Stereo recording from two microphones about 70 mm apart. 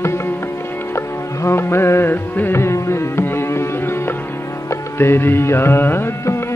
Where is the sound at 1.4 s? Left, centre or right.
Left.